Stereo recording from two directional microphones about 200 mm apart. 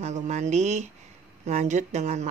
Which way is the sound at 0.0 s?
35° right (ahead or behind).